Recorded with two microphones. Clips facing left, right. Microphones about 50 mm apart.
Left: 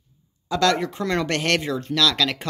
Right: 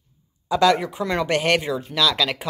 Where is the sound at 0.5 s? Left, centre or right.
Centre.